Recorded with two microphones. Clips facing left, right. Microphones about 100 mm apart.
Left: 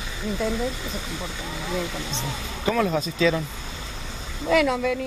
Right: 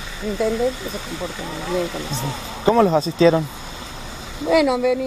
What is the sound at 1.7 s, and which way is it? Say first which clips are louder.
Speech: right 6 dB; 10° right (ahead or behind).